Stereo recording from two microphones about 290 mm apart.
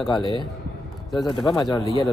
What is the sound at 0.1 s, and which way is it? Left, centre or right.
Speech, centre.